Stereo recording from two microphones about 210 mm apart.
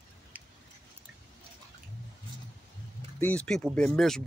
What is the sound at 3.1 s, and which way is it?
Speech, 5° left (ahead or behind).